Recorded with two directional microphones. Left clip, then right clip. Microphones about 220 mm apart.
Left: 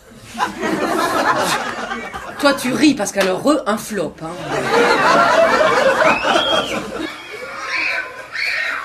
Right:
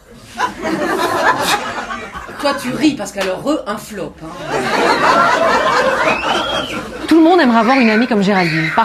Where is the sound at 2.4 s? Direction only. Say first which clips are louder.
Left 1 dB; 45° left (ahead or behind).